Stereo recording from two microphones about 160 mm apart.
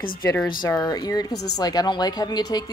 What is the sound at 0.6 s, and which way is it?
Speech, 25° left (ahead or behind).